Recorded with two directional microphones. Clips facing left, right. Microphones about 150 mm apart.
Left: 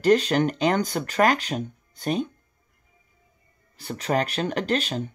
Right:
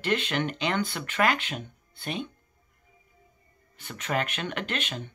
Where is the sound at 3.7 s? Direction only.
35° left (ahead or behind).